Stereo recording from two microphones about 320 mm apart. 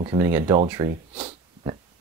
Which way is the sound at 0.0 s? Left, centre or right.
Centre.